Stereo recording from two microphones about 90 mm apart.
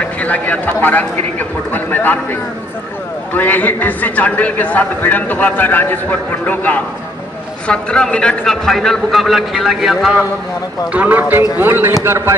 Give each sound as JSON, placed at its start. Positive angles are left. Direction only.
{"t": 0.0, "sound": "a man's voice", "side_deg": 15}
{"t": 3.3, "sound": "a man's voice", "side_deg": 20}
{"t": 10.9, "sound": "speech", "side_deg": -20}